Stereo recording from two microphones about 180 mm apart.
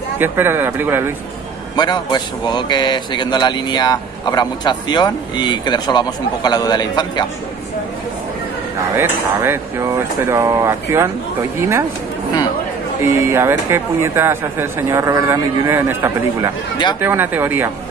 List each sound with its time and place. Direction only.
0.2 s speech: 10° right (ahead or behind)
1.8 s speech: 25° left (ahead or behind)
8.9 s speech: 15° right (ahead or behind)
13.0 s speech: 15° right (ahead or behind)